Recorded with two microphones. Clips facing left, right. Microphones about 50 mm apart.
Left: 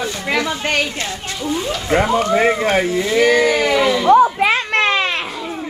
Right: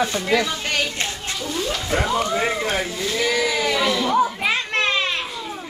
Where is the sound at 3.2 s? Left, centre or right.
Left.